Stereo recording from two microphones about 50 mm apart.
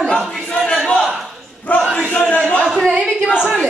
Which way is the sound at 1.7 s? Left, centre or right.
Left.